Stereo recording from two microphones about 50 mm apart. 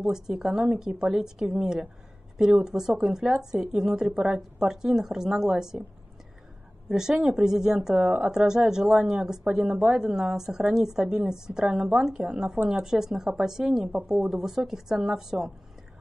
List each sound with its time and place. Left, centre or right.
0.1 s speech: centre
6.9 s speech: centre